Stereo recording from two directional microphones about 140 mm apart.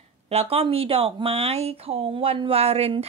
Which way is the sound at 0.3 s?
45° right (ahead or behind).